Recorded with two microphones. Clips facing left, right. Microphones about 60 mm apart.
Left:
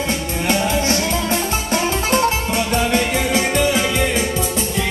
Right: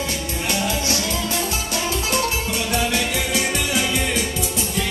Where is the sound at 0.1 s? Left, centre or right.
Left.